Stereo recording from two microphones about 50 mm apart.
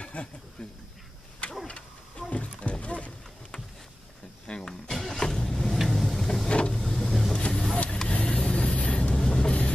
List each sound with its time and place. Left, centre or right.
0.0 s a sound: left
0.6 s speech: centre
1.7 s roaring cats: left
4.5 s a sound: centre
5.2 s vehicle: centre
6.8 s vehicle: centre